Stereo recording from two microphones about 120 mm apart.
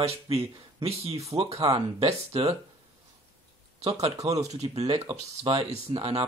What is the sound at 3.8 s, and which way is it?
Speech, 60° right (ahead or behind).